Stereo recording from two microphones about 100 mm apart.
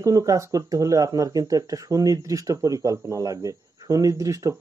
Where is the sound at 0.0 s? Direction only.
35° right (ahead or behind).